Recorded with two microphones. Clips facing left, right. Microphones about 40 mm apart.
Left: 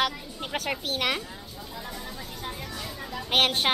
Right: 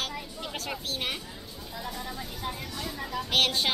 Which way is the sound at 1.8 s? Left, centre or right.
Centre.